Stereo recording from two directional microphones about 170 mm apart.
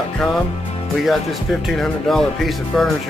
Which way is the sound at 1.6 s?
Centre (ahead or behind).